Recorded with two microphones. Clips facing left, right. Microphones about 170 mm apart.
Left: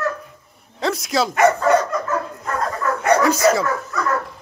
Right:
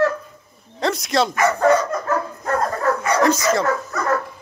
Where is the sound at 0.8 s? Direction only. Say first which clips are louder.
Right 1 dB; 5° left (ahead or behind).